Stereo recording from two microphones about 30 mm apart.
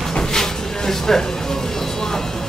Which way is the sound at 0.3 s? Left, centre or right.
Centre.